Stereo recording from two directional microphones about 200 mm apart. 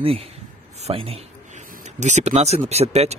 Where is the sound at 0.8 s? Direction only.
30° right (ahead or behind).